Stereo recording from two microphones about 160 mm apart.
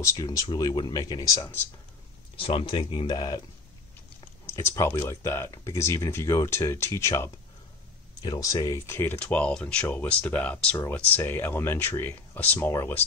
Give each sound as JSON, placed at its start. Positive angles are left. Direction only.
{"t": 0.0, "sound": "speech", "side_deg": 20}
{"t": 2.3, "sound": "speech", "side_deg": 35}
{"t": 4.5, "sound": "speech", "side_deg": 15}